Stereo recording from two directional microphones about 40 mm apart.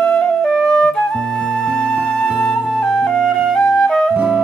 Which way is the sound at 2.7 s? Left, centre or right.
Centre.